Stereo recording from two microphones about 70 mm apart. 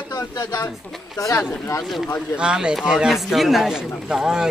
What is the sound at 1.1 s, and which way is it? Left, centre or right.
Speech, left.